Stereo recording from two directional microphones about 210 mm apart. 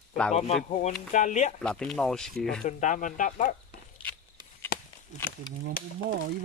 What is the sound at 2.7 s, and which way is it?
Speech, 35° left (ahead or behind).